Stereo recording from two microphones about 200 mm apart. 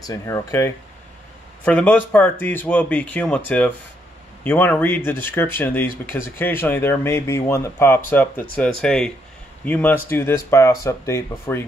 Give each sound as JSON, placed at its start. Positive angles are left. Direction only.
{"t": 0.0, "sound": "speech", "side_deg": 15}